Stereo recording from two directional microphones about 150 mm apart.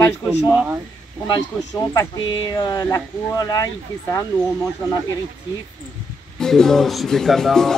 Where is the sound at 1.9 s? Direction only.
25° left (ahead or behind).